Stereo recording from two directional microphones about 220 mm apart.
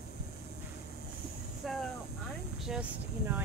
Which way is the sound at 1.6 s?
Centre (ahead or behind).